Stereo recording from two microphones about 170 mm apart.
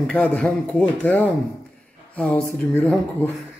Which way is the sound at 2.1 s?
5° left (ahead or behind).